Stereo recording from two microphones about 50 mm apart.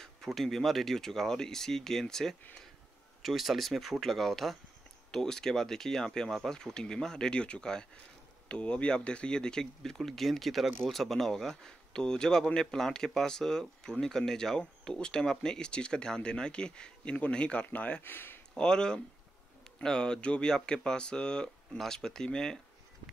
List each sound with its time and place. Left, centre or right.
0.0 s speech: centre
3.2 s speech: centre; by 18.0 s left
18.0 s speech: left
18.5 s speech: centre